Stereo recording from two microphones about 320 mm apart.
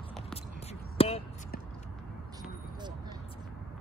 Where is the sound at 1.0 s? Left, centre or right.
Centre.